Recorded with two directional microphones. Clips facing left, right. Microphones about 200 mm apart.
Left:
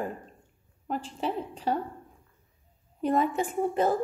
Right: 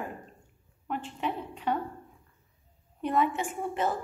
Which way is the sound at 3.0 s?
40° left (ahead or behind).